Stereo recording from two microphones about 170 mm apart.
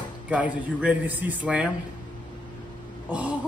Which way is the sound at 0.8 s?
10° right (ahead or behind).